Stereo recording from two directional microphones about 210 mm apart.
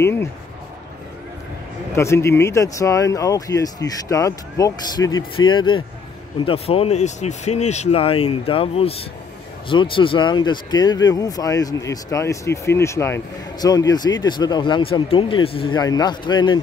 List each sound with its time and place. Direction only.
0.0 s speech: 10° left (ahead or behind)
1.9 s speech: 15° left (ahead or behind)